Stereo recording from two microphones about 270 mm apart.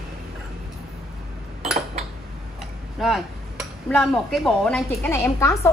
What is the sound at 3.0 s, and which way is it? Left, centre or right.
Speech, centre.